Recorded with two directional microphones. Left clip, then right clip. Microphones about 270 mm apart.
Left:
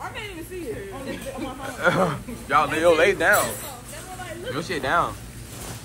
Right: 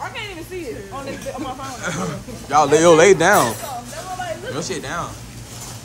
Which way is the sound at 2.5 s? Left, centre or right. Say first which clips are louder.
Right 6 dB; centre.